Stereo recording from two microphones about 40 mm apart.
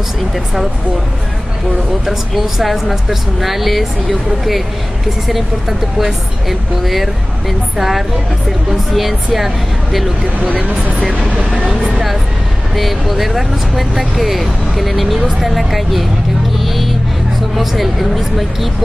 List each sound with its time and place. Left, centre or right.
2.0 s speech: centre
5.3 s speech: centre
10.4 s speech: right
11.5 s speech: centre
16.5 s music: centre
17.6 s speech: centre